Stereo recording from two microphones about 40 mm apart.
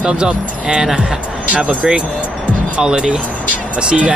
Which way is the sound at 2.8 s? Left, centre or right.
Centre.